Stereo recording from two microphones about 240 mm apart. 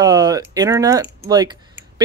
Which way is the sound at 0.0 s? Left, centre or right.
Centre.